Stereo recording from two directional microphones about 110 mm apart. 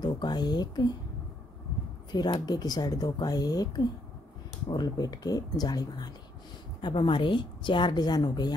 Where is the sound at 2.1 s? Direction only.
40° left (ahead or behind).